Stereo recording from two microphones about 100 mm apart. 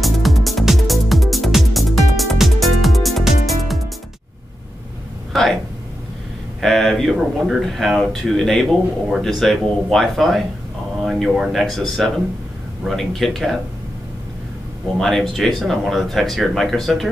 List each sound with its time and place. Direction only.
0.0 s music: centre (ahead or behind)
5.3 s a sound: centre (ahead or behind)
6.6 s speech: centre (ahead or behind)
15.0 s speech: centre (ahead or behind)